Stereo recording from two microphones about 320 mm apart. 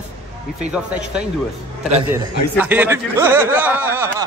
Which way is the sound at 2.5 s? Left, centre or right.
Centre.